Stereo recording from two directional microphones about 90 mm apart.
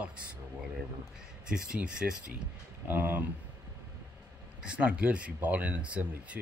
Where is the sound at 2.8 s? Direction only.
20° right (ahead or behind).